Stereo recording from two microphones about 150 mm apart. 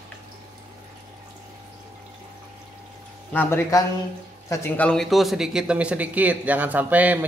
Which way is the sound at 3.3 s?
15° left (ahead or behind).